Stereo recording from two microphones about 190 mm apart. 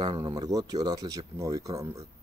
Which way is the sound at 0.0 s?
25° right (ahead or behind).